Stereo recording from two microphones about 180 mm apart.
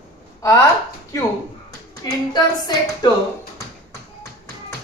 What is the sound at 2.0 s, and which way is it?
Speech, 25° left (ahead or behind).